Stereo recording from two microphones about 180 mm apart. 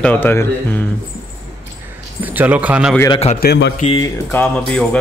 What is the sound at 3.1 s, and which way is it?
Speech, 35° left (ahead or behind).